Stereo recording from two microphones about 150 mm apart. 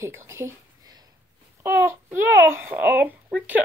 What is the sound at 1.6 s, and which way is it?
A child's voice, 15° right (ahead or behind).